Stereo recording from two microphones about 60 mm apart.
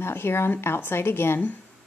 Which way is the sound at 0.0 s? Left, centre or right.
Left.